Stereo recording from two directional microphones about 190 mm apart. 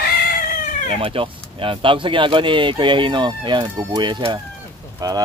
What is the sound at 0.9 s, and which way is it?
Speech, 30° right (ahead or behind).